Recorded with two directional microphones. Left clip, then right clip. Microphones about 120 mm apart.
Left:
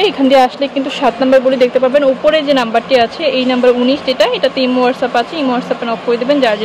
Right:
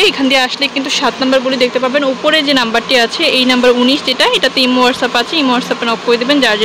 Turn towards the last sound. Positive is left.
turn(degrees=-5)  # may be behind; listen again after turning